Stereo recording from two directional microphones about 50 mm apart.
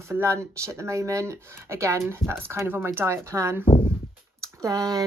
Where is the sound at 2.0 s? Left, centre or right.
Right.